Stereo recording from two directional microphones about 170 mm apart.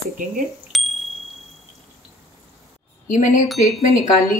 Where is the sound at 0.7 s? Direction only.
Centre (ahead or behind).